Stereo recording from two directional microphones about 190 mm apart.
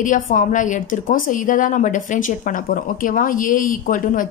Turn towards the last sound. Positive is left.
turn(degrees=45)  # may be behind; listen again after turning